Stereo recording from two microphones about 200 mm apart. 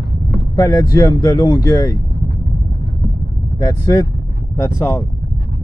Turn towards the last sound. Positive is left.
turn(degrees=15)  # may be behind; listen again after turning